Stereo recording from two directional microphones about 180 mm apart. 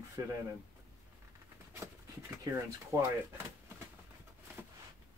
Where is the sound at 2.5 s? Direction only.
20° right (ahead or behind).